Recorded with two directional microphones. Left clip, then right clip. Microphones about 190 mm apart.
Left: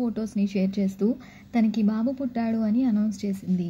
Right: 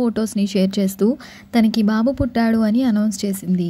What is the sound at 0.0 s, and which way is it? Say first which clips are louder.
A woman's voice: right 8 dB; 35° right (ahead or behind).